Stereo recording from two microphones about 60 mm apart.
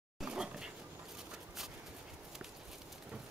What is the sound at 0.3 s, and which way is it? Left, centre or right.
Dog, centre.